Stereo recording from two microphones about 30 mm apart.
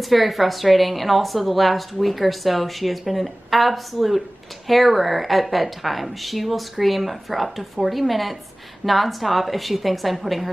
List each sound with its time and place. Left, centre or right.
0.0 s a woman's voice: centre